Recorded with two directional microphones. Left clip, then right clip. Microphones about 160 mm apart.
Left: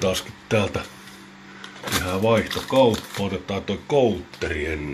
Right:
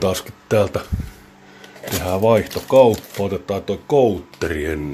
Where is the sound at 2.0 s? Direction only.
40° right (ahead or behind).